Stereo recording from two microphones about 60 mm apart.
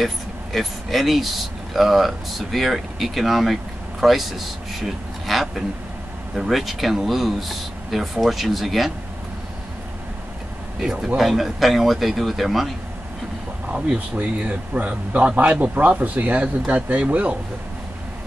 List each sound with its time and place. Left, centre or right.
0.0 s speech: centre
10.8 s speech: centre
13.7 s speech: right